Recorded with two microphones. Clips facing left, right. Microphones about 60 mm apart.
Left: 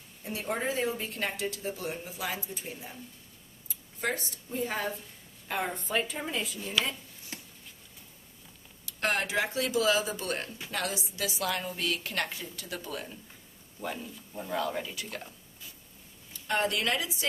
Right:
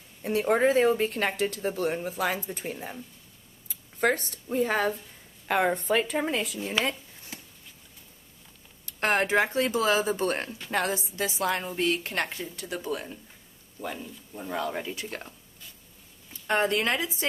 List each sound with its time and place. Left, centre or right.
0.2 s speech: right
6.7 s a woman's voice: right
7.3 s a sound: centre
8.8 s a woman's voice: right
13.7 s speech: centre; by 15.0 s right
15.0 s a woman's voice: right
16.4 s a woman's voice: right